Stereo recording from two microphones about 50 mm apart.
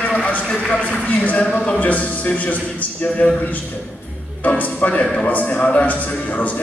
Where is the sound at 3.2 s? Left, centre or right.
Left.